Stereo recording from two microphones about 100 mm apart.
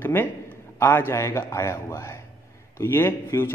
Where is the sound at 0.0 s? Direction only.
20° left (ahead or behind).